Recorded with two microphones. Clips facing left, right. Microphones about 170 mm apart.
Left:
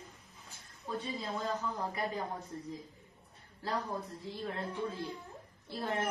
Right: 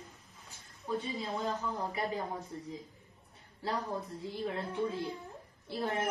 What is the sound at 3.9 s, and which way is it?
Speech, centre (ahead or behind).